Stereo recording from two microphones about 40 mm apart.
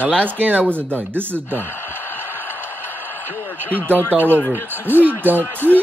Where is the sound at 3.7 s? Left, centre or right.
Left.